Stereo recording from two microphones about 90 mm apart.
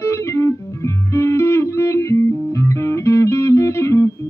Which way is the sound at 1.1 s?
30° left (ahead or behind).